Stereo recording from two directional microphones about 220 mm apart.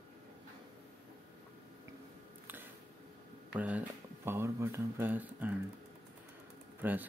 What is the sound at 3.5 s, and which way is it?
Speech, 5° right (ahead or behind).